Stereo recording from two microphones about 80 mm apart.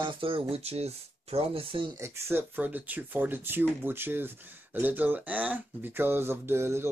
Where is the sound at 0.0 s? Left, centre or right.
Right.